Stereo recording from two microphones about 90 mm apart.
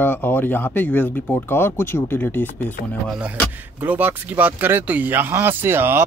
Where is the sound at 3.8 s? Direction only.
20° right (ahead or behind).